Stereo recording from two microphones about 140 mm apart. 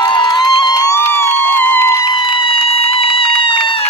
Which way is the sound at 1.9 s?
35° left (ahead or behind).